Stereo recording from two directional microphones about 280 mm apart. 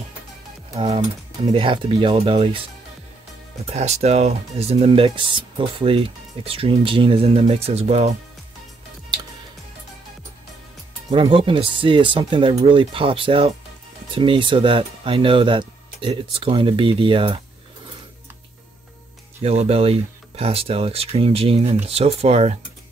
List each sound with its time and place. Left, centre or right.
0.7 s speech: centre
11.1 s speech: centre
19.4 s speech: right